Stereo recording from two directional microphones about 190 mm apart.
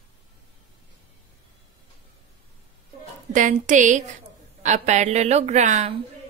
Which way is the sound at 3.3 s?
40° right (ahead or behind).